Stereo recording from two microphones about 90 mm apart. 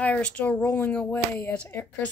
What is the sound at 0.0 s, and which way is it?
Speech, 15° left (ahead or behind).